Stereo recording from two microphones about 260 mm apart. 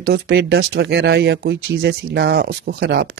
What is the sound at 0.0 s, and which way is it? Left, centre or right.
Speech, right.